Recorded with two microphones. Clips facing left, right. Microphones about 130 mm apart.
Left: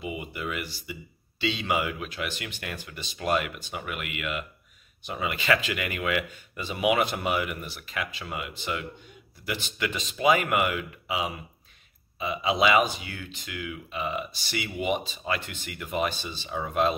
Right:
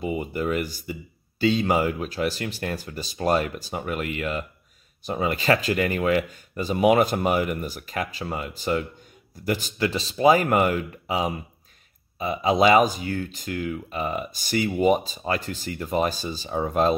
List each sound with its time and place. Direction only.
0.0 s speech: 40° right (ahead or behind)